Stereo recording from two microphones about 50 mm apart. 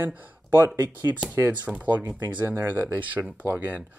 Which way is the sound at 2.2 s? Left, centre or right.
Right.